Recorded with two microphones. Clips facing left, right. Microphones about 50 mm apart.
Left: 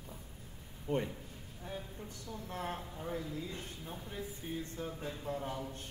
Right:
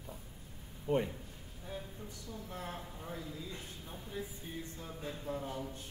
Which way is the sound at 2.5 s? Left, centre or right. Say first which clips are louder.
Left 5 dB; left.